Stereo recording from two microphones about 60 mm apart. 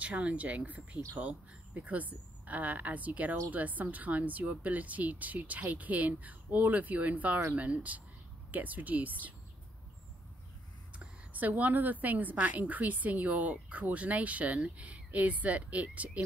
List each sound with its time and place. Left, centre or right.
0.0 s a woman's voice: right
11.0 s a woman's voice: right